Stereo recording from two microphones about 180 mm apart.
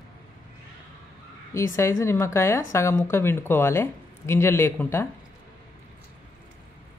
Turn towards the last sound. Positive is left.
turn(degrees=15)  # may be behind; listen again after turning